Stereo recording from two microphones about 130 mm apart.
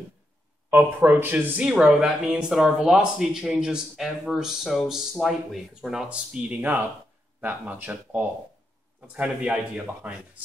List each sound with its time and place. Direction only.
0.7 s speech: 15° right (ahead or behind)